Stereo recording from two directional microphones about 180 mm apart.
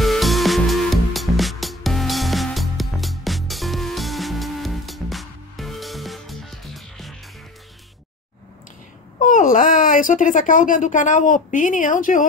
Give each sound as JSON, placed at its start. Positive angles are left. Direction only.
{"t": 0.0, "sound": "music", "side_deg": 0}
{"t": 9.2, "sound": "speech", "side_deg": 50}